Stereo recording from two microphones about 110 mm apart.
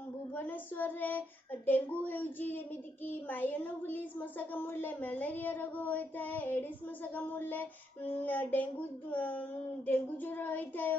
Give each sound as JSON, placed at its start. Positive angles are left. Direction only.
{"t": 0.4, "sound": "speech", "side_deg": 15}